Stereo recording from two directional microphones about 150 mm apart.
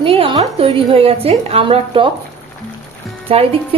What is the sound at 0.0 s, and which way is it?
A woman's voice, 40° right (ahead or behind).